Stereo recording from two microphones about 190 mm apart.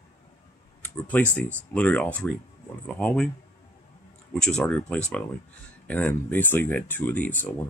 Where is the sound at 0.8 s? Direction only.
10° left (ahead or behind).